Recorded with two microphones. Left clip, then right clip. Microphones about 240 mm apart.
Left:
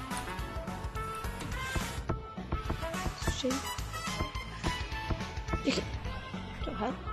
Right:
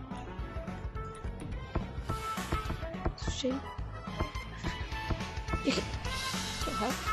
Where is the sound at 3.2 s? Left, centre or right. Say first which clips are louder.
Left 1 dB; centre.